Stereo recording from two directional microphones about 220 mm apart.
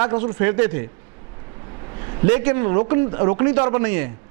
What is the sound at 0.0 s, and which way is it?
Speech, 10° right (ahead or behind).